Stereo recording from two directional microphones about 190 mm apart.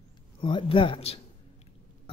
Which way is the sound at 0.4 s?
25° left (ahead or behind).